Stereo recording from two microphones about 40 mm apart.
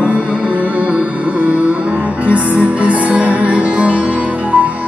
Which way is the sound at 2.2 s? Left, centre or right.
Right.